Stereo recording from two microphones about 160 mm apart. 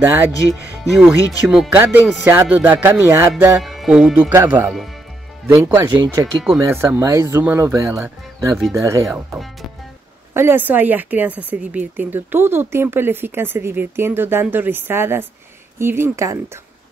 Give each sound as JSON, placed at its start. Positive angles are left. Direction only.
{"t": 0.0, "sound": "a woman's voice", "side_deg": -15}
{"t": 0.8, "sound": "a woman's voice", "side_deg": 0}
{"t": 3.6, "sound": "music", "side_deg": 0}
{"t": 4.3, "sound": "a woman's voice", "side_deg": -15}
{"t": 5.5, "sound": "speech", "side_deg": -20}
{"t": 6.0, "sound": "speech", "side_deg": 0}
{"t": 6.6, "sound": "a woman's voice", "side_deg": -15}
{"t": 8.5, "sound": "speech", "side_deg": 0}
{"t": 10.3, "sound": "a woman's voice", "side_deg": -15}